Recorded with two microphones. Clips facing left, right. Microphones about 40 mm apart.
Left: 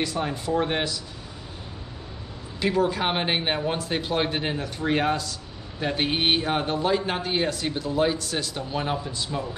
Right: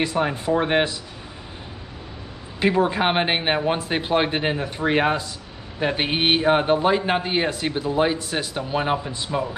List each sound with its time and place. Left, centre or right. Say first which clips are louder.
0.0 s a man's voice: right 5 dB; right
2.6 s a man's voice: right 4 dB; right